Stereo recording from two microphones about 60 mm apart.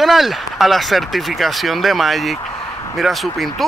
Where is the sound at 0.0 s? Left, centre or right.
Centre.